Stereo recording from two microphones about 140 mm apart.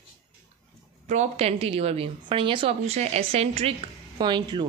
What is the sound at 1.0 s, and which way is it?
A woman's voice, 55° right (ahead or behind).